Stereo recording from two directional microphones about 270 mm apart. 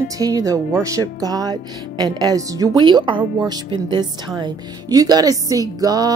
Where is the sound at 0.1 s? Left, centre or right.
Centre.